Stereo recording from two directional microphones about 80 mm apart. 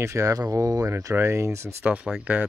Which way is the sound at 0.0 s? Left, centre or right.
Right.